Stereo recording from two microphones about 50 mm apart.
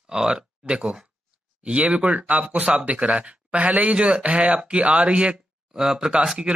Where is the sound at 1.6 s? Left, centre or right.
Right.